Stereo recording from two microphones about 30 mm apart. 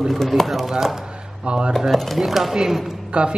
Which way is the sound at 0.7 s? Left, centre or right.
Centre.